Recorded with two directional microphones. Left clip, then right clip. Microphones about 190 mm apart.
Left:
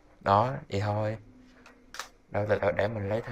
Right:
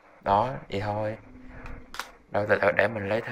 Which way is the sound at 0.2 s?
15° left (ahead or behind).